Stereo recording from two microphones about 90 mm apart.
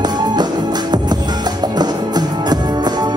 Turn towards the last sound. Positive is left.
turn(degrees=-50)  # may be behind; listen again after turning